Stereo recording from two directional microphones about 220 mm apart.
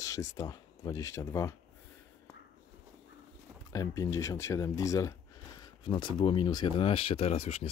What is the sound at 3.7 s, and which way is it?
Speech, 15° left (ahead or behind).